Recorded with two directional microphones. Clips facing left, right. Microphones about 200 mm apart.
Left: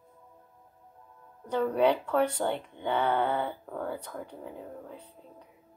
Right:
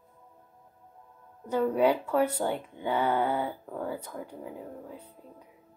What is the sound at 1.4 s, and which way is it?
Speech, 10° right (ahead or behind).